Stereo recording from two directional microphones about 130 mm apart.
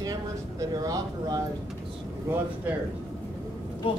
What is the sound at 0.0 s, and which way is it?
Speech, 30° right (ahead or behind).